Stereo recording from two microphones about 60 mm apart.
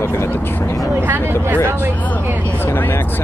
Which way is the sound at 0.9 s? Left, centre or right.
Right.